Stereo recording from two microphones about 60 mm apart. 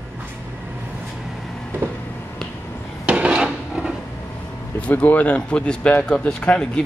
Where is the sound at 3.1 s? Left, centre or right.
Right.